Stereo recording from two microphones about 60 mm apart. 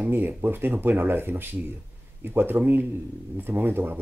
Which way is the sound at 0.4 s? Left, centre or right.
Right.